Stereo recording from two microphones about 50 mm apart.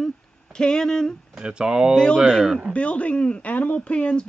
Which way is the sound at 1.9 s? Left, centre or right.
Centre.